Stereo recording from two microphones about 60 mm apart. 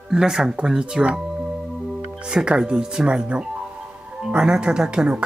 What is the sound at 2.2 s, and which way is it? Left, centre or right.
Speech, centre.